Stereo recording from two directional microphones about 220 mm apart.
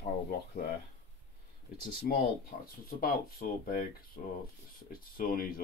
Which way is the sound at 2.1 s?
40° left (ahead or behind).